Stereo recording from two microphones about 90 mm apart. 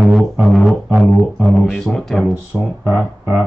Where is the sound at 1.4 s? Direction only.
Centre (ahead or behind).